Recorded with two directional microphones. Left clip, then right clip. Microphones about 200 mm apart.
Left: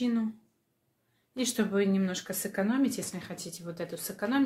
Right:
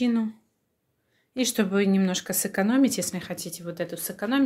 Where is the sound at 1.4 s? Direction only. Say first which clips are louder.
Right 4 dB; 35° right (ahead or behind).